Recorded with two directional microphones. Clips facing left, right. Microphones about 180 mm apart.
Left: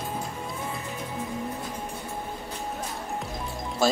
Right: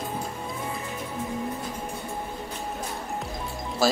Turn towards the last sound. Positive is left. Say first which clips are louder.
# even
turn(degrees=0)  # may be behind; listen again after turning